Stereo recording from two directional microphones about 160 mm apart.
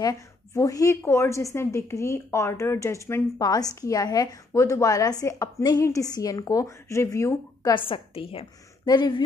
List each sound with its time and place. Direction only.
0.0 s a woman's voice: 20° left (ahead or behind)
7.7 s a woman's voice: 30° left (ahead or behind)